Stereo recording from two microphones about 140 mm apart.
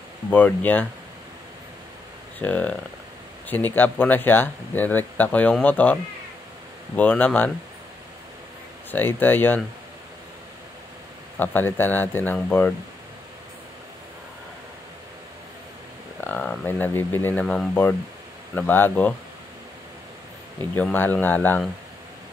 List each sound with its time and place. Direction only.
0.3 s speech: 10° left (ahead or behind)
2.3 s speech: 10° left (ahead or behind)
7.0 s speech: 10° left (ahead or behind)
8.9 s speech: 15° left (ahead or behind)
11.3 s speech: 15° left (ahead or behind)
16.2 s speech: 10° left (ahead or behind)
20.7 s speech: 10° left (ahead or behind)